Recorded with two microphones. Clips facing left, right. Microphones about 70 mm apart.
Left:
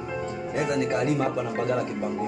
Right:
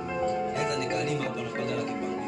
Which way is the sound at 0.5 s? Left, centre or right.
Left.